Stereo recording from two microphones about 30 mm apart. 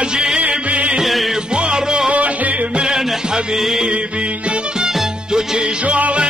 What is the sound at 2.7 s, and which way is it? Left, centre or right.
Music, right.